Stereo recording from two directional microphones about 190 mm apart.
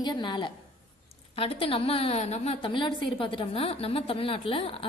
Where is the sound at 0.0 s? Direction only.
25° left (ahead or behind).